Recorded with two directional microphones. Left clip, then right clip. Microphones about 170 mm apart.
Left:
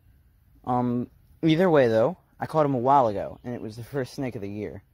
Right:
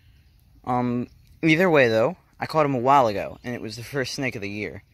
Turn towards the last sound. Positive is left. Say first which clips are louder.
# right 3 dB
turn(degrees=15)  # may be behind; listen again after turning